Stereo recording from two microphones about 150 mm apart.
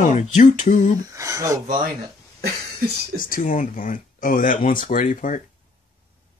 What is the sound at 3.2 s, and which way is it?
Speech, 65° left (ahead or behind).